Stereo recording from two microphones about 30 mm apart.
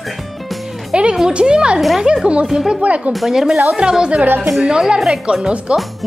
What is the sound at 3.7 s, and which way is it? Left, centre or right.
Speech, right.